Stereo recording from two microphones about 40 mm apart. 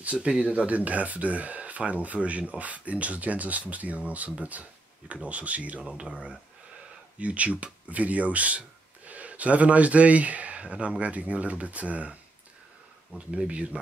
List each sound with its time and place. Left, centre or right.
0.0 s speech: right
13.3 s speech: right